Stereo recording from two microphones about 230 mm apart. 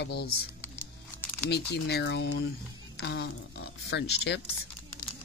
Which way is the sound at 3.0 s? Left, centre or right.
Left.